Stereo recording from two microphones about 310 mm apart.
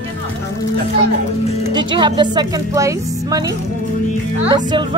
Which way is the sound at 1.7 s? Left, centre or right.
Centre.